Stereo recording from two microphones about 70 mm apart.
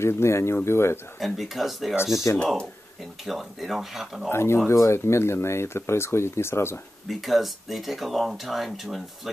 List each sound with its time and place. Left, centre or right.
0.0 s speech: left
1.2 s speech: centre
2.3 s speech: centre
3.3 s speech: centre
4.3 s speech: left
7.1 s speech: centre